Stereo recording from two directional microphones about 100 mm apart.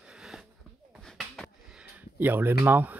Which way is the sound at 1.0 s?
5° left (ahead or behind).